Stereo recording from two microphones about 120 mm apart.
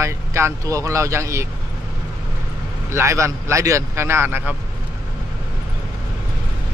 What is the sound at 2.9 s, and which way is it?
Speech, 25° right (ahead or behind).